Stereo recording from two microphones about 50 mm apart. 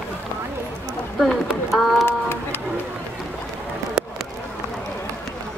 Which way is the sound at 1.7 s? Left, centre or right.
Centre.